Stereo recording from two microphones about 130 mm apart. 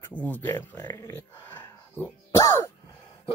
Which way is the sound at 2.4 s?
30° left (ahead or behind).